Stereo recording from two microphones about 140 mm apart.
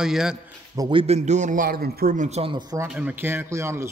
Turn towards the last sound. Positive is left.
turn(degrees=-20)  # may be behind; listen again after turning